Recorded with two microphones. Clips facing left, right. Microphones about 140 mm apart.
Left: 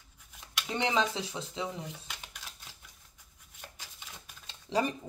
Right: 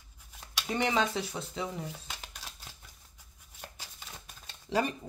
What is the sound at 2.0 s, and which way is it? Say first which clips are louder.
Shuffling cards: right 2 dB; 35° right (ahead or behind).